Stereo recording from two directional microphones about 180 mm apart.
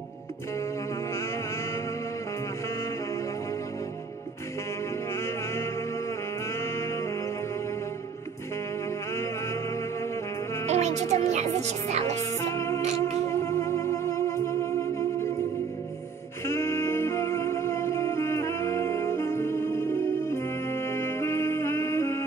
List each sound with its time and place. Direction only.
5.1 s music: 15° left (ahead or behind)
9.1 s music: 15° left (ahead or behind)
10.7 s music: 40° right (ahead or behind)
11.6 s speech: 35° right (ahead or behind)
12.2 s music: 15° left (ahead or behind)
16.4 s music: 15° left (ahead or behind)